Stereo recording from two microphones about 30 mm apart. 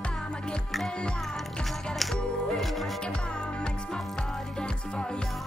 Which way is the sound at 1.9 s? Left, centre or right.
Centre.